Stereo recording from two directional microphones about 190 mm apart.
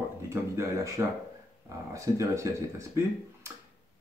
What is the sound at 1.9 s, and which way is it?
Speech, 15° right (ahead or behind).